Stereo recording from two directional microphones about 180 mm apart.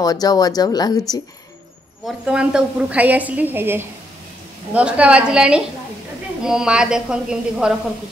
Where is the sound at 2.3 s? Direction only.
5° right (ahead or behind).